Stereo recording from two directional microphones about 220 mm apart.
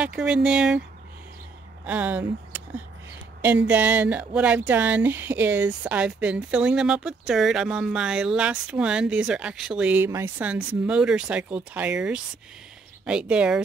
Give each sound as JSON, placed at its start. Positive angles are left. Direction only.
{"t": 0.0, "sound": "speech", "side_deg": -5}
{"t": 1.9, "sound": "speech", "side_deg": -10}